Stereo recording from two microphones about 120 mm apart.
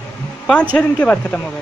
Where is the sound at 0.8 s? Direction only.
10° left (ahead or behind).